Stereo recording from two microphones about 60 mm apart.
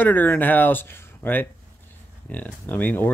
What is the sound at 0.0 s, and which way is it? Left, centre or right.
Speech, left.